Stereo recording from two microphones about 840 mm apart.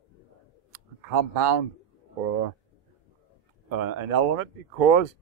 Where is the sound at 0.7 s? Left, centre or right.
Right.